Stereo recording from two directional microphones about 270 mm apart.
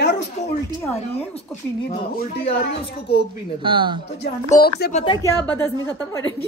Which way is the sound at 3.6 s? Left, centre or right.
Centre.